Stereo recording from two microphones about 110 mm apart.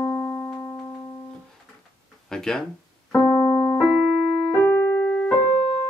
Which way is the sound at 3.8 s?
Centre (ahead or behind).